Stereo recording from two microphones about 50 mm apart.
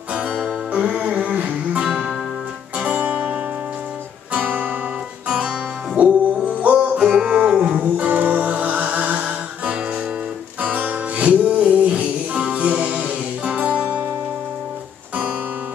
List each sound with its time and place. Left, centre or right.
0.7 s music: right
1.9 s music: centre
2.8 s music: right
4.5 s music: right
5.9 s music: right
7.1 s music: centre